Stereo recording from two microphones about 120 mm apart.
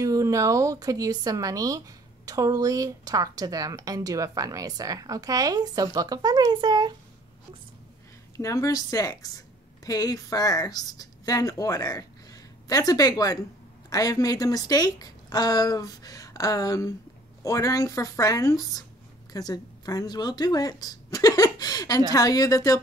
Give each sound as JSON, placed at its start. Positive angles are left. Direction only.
{"t": 0.0, "sound": "a woman's voice", "side_deg": -30}
{"t": 8.4, "sound": "a woman's voice", "side_deg": 25}